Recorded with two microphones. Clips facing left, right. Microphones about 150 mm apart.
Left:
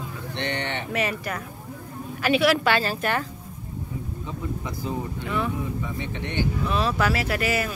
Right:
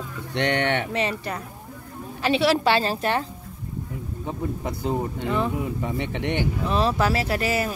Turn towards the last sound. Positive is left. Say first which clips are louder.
# right 1 dB
turn(degrees=-30)  # may be behind; listen again after turning